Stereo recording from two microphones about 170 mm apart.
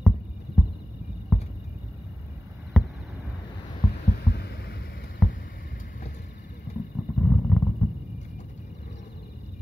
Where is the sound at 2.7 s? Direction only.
Centre (ahead or behind).